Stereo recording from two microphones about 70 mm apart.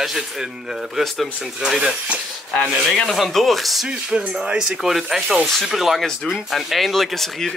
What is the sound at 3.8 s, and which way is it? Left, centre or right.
Speech, centre.